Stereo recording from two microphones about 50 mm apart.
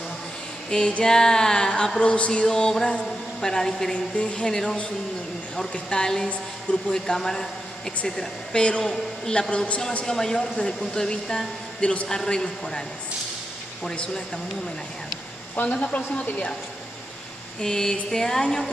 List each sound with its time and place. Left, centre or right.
0.7 s a woman's voice: centre
2.4 s speech: centre
3.9 s a woman's voice: left
4.5 s speech: centre
9.5 s a woman's voice: left
10.0 s speech: centre
13.9 s speech: centre
15.5 s a woman's voice: left
17.6 s speech: centre